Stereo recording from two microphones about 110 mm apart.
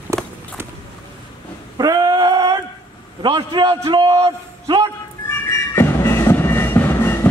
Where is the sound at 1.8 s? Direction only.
35° right (ahead or behind).